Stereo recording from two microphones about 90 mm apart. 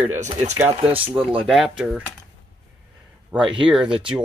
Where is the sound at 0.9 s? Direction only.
90° right.